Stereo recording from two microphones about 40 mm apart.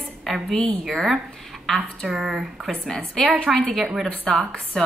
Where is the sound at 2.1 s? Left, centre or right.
Centre.